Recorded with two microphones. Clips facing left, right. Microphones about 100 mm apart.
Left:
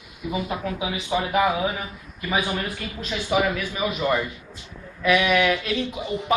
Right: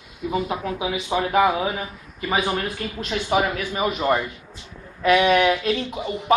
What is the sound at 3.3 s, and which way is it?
A man's voice, 35° right (ahead or behind).